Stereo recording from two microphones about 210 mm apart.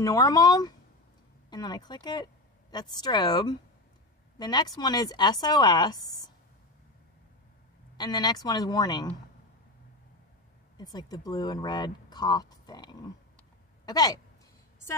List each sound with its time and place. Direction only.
0.0 s speech: 15° left (ahead or behind)
8.0 s speech: 20° left (ahead or behind)
10.8 s speech: 20° left (ahead or behind)